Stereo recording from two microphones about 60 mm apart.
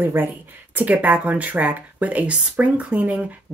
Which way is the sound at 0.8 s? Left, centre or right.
Right.